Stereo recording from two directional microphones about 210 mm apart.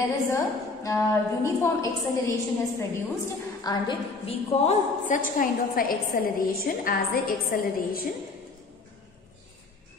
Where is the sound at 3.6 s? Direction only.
20° left (ahead or behind); by 8.0 s 45° left (ahead or behind).